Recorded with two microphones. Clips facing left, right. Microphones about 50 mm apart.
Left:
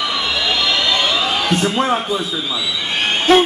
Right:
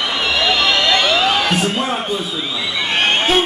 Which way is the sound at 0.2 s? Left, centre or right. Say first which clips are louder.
Right 3 dB; right.